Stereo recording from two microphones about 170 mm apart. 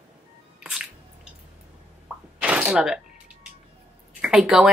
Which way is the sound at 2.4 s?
10° right (ahead or behind).